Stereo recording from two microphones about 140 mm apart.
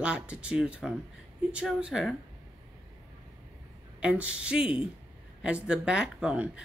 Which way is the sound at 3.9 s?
10° right (ahead or behind).